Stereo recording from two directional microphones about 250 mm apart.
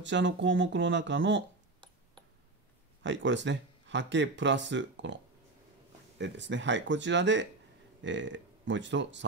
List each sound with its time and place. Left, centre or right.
0.0 s speech: right
3.0 s speech: right